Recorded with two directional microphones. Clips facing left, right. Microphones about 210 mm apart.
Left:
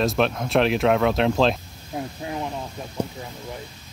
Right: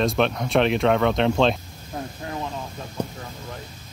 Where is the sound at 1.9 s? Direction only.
15° left (ahead or behind).